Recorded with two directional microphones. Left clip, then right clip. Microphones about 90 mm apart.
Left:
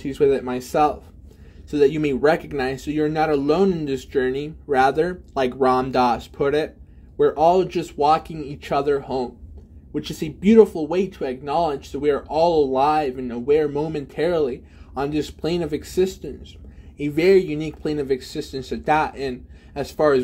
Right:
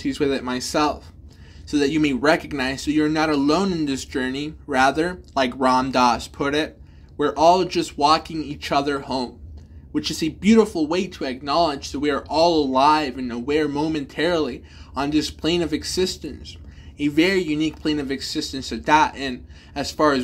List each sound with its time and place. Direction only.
0.0 s speech: 25° left (ahead or behind)
16.9 s speech: 40° left (ahead or behind)